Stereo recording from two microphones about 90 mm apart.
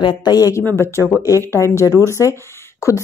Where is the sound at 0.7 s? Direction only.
25° left (ahead or behind).